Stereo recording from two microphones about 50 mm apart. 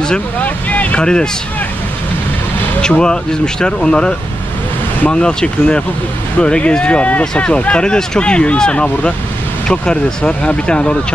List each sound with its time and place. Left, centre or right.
0.4 s vehicle: left
1.0 s speech: centre
2.8 s speech: centre
5.1 s speech: centre